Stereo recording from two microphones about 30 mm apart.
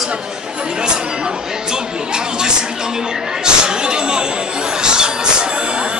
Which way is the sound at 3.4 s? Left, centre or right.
Right.